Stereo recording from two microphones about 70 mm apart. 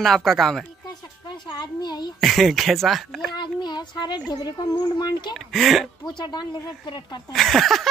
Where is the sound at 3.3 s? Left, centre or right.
Left.